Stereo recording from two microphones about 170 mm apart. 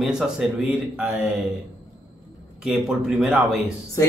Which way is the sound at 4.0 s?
20° left (ahead or behind).